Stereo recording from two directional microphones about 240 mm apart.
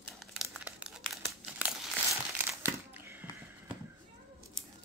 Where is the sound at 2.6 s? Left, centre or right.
Centre.